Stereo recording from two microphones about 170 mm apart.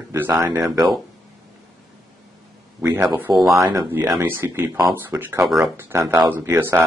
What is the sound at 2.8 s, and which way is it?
A man's voice, 20° right (ahead or behind).